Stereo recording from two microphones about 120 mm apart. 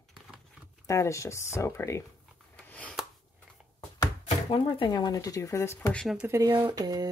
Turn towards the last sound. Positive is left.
turn(degrees=-30)  # may be behind; listen again after turning